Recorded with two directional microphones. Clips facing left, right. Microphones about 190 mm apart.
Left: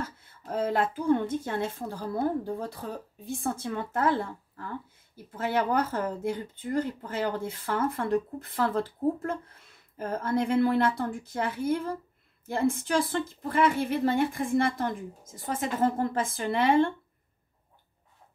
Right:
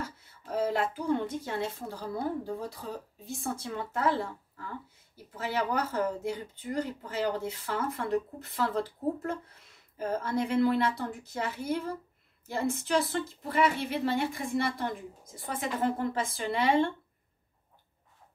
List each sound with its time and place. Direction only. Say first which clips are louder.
0.0 s speech: left 2 dB; 50° left (ahead or behind)